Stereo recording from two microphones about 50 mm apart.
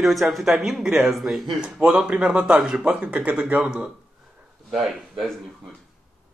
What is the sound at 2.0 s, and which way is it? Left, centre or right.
Speech, right.